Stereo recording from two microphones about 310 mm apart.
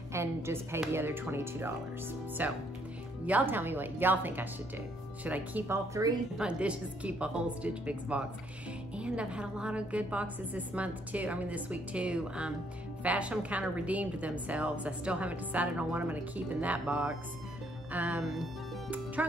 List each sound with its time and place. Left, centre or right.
0.1 s a woman's voice: centre